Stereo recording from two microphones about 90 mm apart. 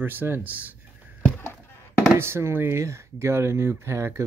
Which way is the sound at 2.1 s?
30° right (ahead or behind).